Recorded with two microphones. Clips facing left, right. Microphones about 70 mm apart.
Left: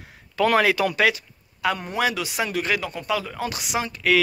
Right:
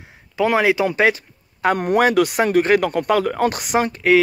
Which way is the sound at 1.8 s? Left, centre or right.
Right.